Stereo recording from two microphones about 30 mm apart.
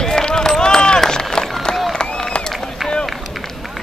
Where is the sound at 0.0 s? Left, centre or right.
Left.